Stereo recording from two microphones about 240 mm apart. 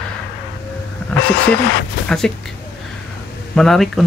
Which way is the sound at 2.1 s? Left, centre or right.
Centre.